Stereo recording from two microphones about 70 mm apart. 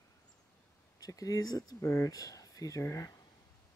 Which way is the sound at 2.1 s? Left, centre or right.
Left.